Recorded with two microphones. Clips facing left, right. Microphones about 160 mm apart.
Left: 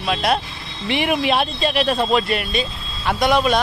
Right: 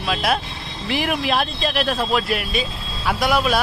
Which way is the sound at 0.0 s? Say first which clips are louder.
Left 2 dB; centre (ahead or behind).